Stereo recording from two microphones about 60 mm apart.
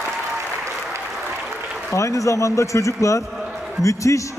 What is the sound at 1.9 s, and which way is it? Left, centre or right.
A man's voice, left.